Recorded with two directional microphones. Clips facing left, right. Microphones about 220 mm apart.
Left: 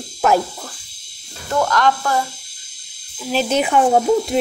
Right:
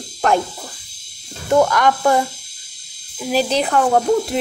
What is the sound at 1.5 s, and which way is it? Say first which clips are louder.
Speech: right 3 dB; 10° right (ahead or behind).